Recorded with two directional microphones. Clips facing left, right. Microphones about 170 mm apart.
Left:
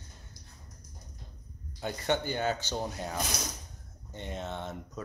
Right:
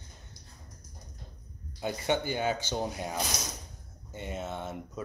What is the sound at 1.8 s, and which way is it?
Speech, 10° right (ahead or behind).